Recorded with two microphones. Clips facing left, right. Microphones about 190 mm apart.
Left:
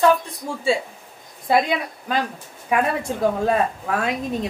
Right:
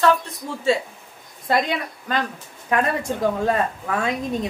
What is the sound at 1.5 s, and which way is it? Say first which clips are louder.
A woman's voice: left 2 dB; 10° left (ahead or behind).